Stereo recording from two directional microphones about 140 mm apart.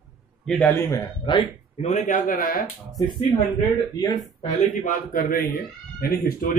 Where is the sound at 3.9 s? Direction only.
30° left (ahead or behind).